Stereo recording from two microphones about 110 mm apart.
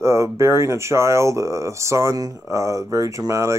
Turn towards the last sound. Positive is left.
turn(degrees=-30)  # may be behind; listen again after turning